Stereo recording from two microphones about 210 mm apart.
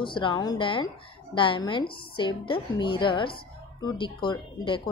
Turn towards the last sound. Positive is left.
turn(degrees=20)  # may be behind; listen again after turning